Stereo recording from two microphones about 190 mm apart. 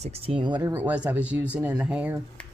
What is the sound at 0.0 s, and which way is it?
Speech, 30° right (ahead or behind).